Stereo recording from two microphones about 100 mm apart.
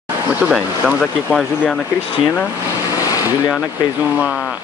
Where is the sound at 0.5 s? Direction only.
5° right (ahead or behind).